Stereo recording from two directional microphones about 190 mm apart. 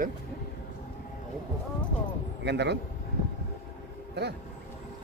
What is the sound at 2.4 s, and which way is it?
Speech, 65° right (ahead or behind).